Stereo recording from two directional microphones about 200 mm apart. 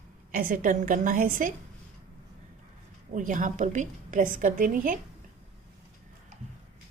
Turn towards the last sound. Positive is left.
turn(degrees=-45)  # may be behind; listen again after turning